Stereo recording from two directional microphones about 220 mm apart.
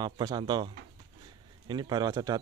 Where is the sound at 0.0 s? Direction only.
20° right (ahead or behind).